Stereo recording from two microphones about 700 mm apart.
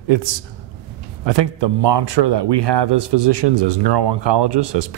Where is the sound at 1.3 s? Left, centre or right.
Right.